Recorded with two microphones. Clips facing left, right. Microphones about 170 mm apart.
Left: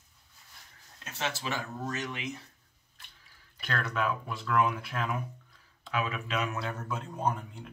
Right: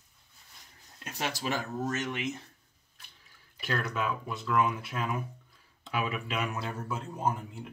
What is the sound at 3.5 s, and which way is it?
A man's voice, 5° right (ahead or behind).